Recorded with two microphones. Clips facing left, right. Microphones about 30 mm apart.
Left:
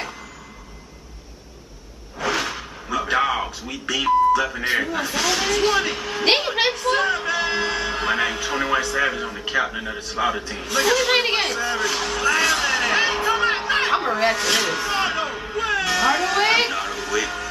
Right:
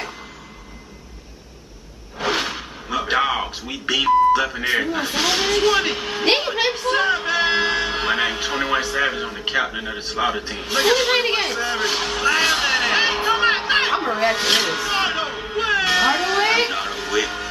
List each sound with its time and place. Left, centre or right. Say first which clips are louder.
2.1 s a sound: right 1 dB; right
3.4 s speech: right 3 dB; right
6.2 s a woman's voice: even; centre
6.9 s speech: right 1 dB; centre
7.2 s speech: right 3 dB; right
11.1 s a woman's voice: even; centre
11.5 s a sound: right 1 dB; centre
13.9 s a woman's voice: even; centre
14.3 s speech: right 2 dB; right
14.9 s music: right 1 dB; right
15.5 s cat: right 4 dB; right
16.3 s a sound: even; centre
16.7 s music: right 2 dB; centre